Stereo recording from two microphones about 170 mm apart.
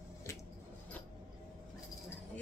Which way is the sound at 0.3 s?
20° left (ahead or behind).